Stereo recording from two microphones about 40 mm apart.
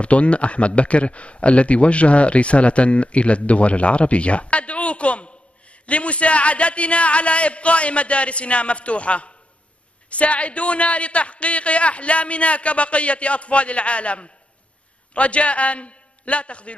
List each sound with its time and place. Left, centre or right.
0.0 s a man's voice: left